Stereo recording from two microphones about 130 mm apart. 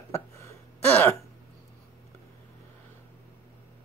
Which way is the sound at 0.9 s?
15° left (ahead or behind).